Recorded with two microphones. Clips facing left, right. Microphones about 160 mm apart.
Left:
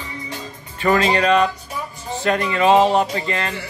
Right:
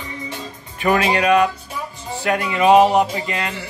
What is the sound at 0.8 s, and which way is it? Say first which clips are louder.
Speech: even; 10° right (ahead or behind).